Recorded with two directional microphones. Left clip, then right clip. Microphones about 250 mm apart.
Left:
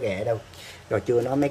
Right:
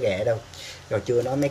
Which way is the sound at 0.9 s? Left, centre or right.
Centre.